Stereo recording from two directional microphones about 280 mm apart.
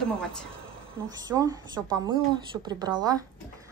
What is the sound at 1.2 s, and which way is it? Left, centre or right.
Speech, centre.